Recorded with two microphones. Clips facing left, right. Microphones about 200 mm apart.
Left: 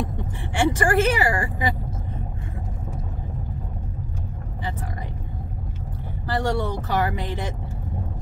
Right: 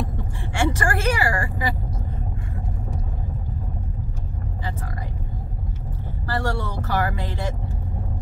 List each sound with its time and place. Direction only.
0.6 s a woman's voice: 20° left (ahead or behind)
6.2 s speech: 20° left (ahead or behind)